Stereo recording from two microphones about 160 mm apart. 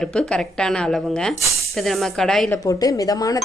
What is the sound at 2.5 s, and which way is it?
Speech, 20° left (ahead or behind).